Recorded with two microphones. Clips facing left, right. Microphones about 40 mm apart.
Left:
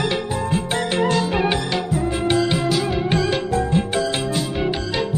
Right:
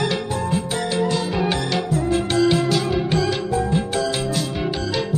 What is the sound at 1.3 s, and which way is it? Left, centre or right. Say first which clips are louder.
Music: left 2 dB; left.